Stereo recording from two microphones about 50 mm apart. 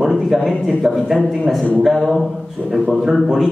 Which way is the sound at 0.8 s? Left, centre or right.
Centre.